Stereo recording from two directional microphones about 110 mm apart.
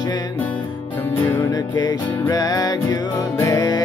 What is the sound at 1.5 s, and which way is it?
Music, 40° left (ahead or behind).